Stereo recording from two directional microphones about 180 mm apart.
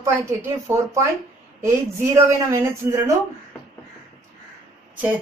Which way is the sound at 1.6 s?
15° right (ahead or behind).